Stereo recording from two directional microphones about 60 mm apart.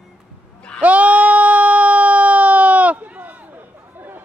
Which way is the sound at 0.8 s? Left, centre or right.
Right.